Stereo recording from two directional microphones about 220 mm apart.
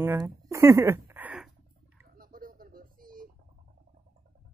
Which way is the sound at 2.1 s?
40° right (ahead or behind).